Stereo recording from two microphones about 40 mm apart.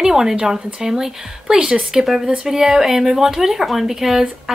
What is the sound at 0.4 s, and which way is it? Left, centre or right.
A woman's voice, right.